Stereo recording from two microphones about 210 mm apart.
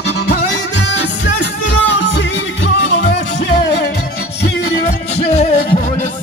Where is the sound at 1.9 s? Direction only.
60° left (ahead or behind).